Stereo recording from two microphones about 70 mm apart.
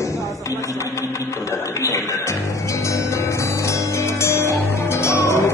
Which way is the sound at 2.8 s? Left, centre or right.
Left.